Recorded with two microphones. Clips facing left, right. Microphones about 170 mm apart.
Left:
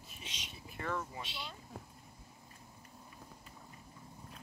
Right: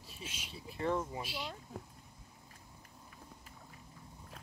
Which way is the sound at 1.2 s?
10° right (ahead or behind).